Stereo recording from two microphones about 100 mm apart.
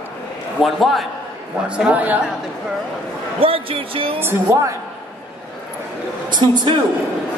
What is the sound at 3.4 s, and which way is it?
Speech, 65° right (ahead or behind).